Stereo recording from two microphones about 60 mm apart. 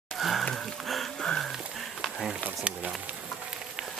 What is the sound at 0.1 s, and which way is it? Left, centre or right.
Wheeze, centre.